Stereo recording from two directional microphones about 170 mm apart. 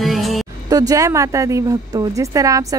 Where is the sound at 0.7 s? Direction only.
20° right (ahead or behind).